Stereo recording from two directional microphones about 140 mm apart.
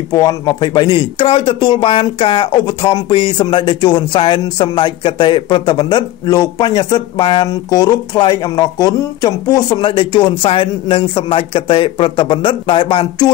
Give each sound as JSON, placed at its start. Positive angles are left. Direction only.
{"t": 0.1, "sound": "speech", "side_deg": 25}